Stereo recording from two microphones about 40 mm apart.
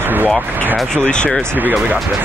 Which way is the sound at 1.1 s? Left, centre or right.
Left.